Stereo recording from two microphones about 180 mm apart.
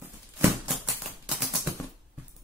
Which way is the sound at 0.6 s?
Centre (ahead or behind).